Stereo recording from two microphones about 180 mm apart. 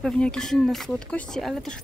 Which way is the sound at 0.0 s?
5° left (ahead or behind).